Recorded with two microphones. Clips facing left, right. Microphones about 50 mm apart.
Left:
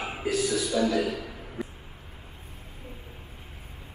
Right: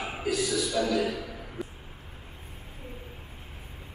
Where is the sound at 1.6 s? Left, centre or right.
Centre.